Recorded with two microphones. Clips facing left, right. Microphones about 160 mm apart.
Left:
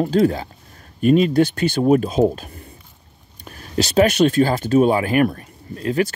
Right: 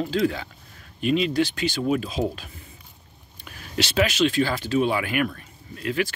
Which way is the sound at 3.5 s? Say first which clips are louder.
Left 6 dB; 40° left (ahead or behind).